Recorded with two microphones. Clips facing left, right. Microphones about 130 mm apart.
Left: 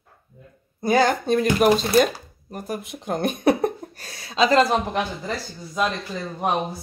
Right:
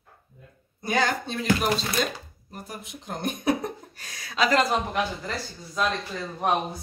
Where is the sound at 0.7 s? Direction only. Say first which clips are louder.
Left 6 dB; 40° left (ahead or behind); by 3.7 s 60° left (ahead or behind).